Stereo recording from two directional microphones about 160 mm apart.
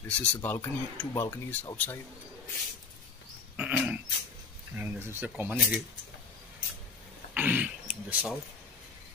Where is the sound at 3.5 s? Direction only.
10° right (ahead or behind).